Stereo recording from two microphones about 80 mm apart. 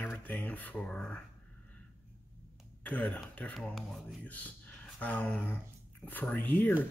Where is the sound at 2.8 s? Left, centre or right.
Centre.